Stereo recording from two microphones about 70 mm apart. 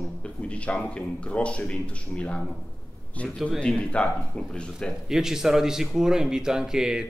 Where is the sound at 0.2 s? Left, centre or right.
Centre.